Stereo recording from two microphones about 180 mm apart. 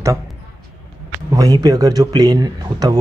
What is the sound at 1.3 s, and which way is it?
Speech, 20° right (ahead or behind).